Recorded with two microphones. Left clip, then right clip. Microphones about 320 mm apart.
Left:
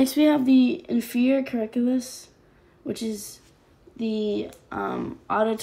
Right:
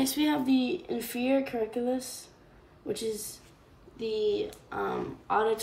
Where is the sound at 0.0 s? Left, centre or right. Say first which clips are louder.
Left 8 dB; centre.